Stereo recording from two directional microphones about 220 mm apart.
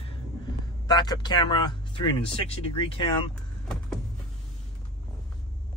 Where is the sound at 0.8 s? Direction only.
20° left (ahead or behind).